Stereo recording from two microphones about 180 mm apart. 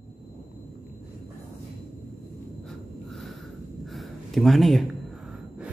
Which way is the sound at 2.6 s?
Centre (ahead or behind).